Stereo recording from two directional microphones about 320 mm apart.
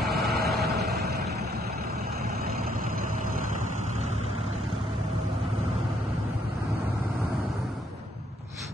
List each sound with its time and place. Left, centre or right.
0.0 s vehicle: right